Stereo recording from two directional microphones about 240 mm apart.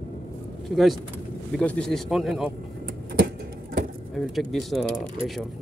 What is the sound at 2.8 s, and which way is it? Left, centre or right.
Vehicle, right.